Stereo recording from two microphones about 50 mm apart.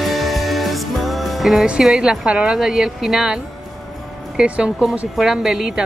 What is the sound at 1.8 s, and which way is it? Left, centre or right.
Speech, centre.